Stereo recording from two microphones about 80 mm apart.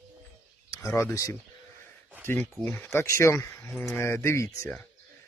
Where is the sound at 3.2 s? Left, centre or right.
Left.